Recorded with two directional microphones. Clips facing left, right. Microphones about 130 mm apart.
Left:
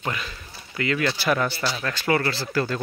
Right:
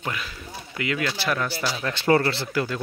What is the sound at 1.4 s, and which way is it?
Speech, 10° right (ahead or behind).